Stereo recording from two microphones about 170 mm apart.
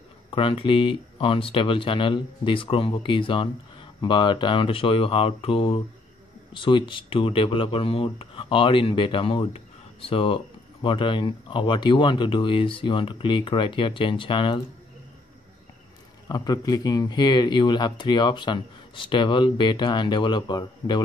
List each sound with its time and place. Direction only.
0.3 s speech: 30° left (ahead or behind)
16.3 s speech: 20° left (ahead or behind)